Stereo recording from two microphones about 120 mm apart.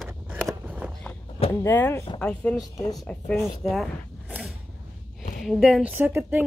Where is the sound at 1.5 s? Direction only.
20° left (ahead or behind).